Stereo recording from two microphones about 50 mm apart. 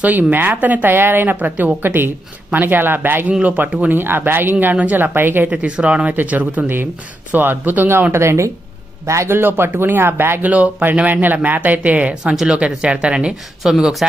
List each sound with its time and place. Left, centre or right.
0.0 s speech: right
5.9 s speech: right
6.1 s speech: right
9.0 s a man's voice: right
9.3 s speech: right
10.4 s speech: right
12.1 s speech: centre